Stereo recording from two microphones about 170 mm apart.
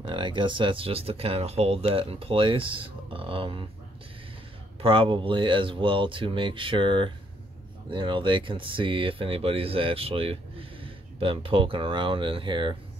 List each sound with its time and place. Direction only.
0.0 s speech: 30° right (ahead or behind)
4.8 s speech: 30° right (ahead or behind)